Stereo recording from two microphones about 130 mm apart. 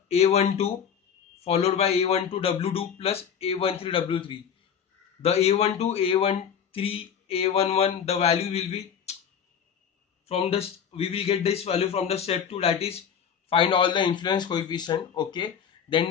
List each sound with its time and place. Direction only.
0.1 s a man's voice: 55° left (ahead or behind)
5.2 s a man's voice: 55° left (ahead or behind)
10.2 s a man's voice: 50° left (ahead or behind)